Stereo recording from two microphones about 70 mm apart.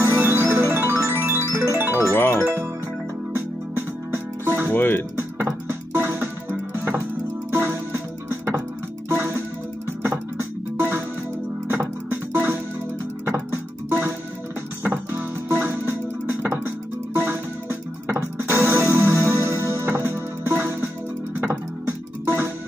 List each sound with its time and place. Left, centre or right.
0.0 s music: right
2.1 s music: left
3.3 s music: right
4.6 s speech: left
5.4 s music: right
7.5 s music: right
10.8 s music: right
22.2 s music: right